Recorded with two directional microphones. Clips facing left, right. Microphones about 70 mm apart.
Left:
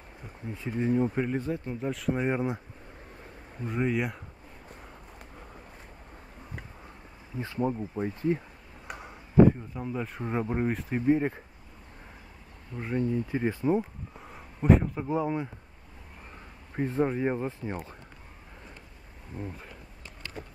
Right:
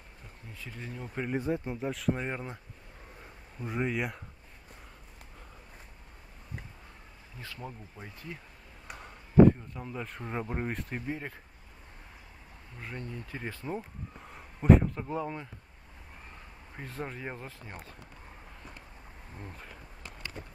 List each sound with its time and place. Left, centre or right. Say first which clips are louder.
0.5 s speech: left 15 dB; left
1.3 s speech: even; centre
1.8 s speech: left 2 dB; centre
2.2 s speech: left 9 dB; centre
3.6 s speech: left 3 dB; centre
7.3 s speech: left 14 dB; left
8.8 s a sound: left 5 dB; centre
9.8 s speech: left 6 dB; centre
11.0 s speech: left 13 dB; centre
12.7 s speech: left 12 dB; centre
14.2 s speech: even; centre
16.7 s speech: left 12 dB; left
19.3 s speech: left 8 dB; centre